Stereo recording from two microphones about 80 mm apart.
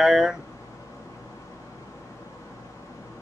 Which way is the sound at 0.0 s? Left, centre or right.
Centre.